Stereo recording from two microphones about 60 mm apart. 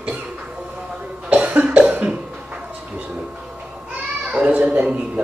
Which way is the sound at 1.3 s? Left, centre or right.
Right.